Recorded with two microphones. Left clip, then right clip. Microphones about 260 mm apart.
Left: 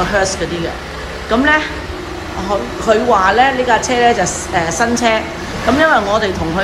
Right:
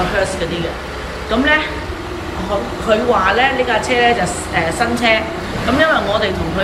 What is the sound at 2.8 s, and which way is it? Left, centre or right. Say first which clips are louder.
A woman's voice: left 3 dB; centre.